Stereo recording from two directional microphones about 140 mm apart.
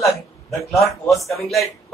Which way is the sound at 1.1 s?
Centre (ahead or behind).